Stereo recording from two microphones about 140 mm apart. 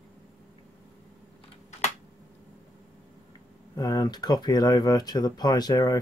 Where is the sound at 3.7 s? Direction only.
25° left (ahead or behind).